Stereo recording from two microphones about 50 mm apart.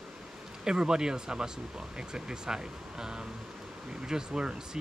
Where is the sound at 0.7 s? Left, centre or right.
Centre.